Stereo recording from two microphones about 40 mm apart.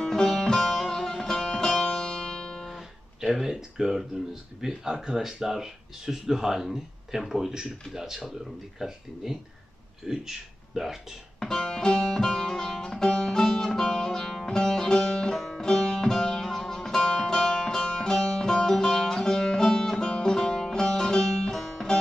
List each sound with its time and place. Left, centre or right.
0.0 s music: centre
3.2 s speech: centre
11.3 s music: centre